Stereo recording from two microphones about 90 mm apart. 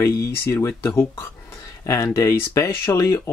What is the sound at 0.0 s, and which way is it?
Speech, 30° left (ahead or behind).